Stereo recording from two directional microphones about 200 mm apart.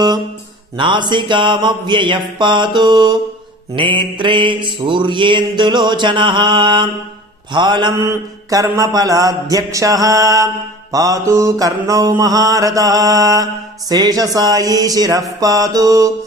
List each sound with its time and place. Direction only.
0.7 s mantra: 25° right (ahead or behind)